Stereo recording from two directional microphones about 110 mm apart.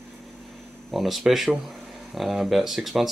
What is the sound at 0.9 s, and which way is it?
Speech, centre (ahead or behind).